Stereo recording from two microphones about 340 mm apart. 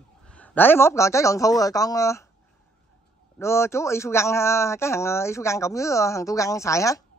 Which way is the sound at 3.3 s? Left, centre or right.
Centre.